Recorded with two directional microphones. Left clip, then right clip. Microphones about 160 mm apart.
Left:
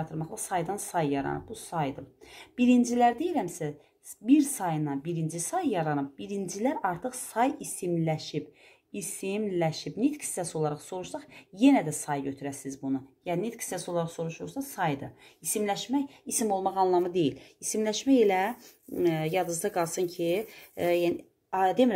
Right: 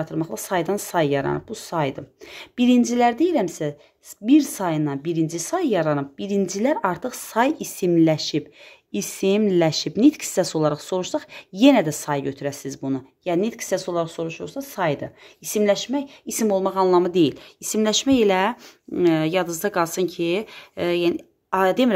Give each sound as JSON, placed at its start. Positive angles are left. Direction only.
{"t": 0.0, "sound": "a woman's voice", "side_deg": -50}